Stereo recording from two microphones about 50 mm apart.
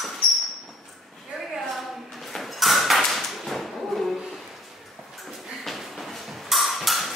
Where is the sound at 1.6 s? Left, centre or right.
Centre.